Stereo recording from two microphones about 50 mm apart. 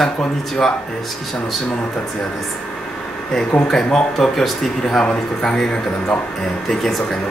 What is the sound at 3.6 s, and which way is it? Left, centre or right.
Speech, centre.